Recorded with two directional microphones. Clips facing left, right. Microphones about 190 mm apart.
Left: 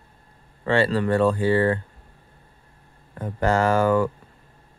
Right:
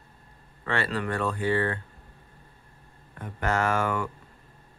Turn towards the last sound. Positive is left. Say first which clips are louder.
# left 8 dB
turn(degrees=35)  # may be behind; listen again after turning